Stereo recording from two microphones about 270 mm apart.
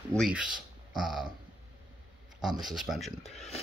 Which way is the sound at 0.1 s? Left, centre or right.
Centre.